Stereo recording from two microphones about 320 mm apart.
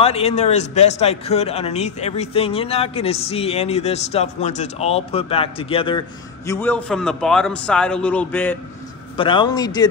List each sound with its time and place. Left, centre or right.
0.0 s a man's voice: centre